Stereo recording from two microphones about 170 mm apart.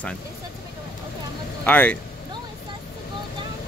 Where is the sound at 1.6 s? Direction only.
10° left (ahead or behind).